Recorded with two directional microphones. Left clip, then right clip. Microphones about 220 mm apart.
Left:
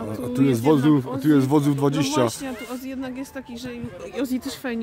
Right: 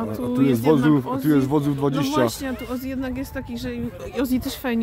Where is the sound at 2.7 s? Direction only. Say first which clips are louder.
Right 3 dB; 20° right (ahead or behind).